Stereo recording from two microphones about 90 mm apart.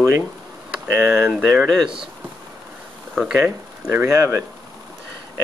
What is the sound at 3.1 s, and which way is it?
Speech, 10° right (ahead or behind).